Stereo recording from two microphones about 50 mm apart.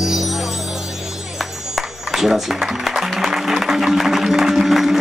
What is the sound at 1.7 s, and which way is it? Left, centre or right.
Music, centre.